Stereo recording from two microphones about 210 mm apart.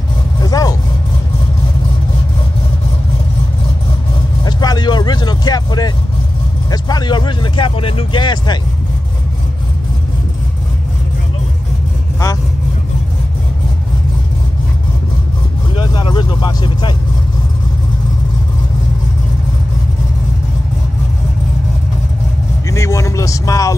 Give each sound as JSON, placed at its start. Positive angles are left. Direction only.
{"t": 0.4, "sound": "vehicle", "side_deg": 15}
{"t": 4.5, "sound": "vehicle", "side_deg": 20}
{"t": 6.7, "sound": "speech", "side_deg": 20}
{"t": 15.7, "sound": "speech", "side_deg": 20}
{"t": 22.7, "sound": "speech", "side_deg": 15}